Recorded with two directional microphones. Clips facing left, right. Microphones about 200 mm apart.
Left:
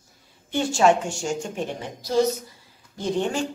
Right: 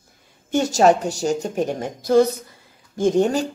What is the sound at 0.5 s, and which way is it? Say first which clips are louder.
A woman's voice: right 3 dB; 40° right (ahead or behind).